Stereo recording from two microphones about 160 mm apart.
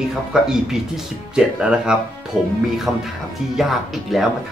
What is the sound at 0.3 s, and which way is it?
Speech, 5° right (ahead or behind).